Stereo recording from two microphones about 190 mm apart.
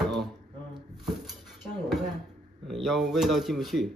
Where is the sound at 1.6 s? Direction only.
Centre (ahead or behind).